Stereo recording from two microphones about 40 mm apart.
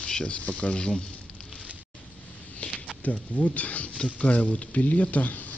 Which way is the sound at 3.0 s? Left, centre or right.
Left.